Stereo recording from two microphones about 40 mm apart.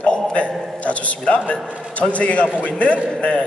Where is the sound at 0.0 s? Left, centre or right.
Left.